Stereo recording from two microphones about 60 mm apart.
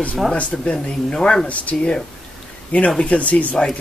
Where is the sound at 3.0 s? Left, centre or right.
Left.